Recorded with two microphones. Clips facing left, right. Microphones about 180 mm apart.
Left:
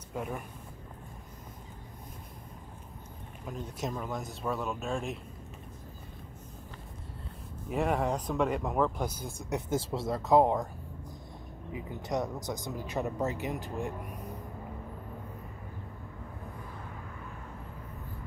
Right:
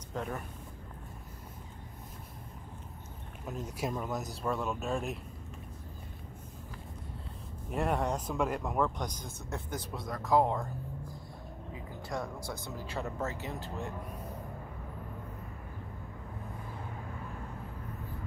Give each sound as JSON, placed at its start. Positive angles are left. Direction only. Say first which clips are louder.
{"t": 0.1, "sound": "speech", "louder": "left 1 dB", "side_deg": 10}
{"t": 3.4, "sound": "speech", "louder": "even", "side_deg": -5}
{"t": 7.7, "sound": "speech", "louder": "left 2 dB", "side_deg": 0}
{"t": 9.5, "sound": "speech", "louder": "left 8 dB", "side_deg": 25}
{"t": 11.7, "sound": "speech", "louder": "left 5 dB", "side_deg": 20}